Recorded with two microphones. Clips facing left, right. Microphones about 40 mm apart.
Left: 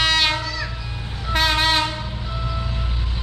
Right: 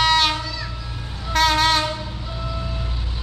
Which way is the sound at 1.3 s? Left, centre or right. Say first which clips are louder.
Right 1 dB; centre.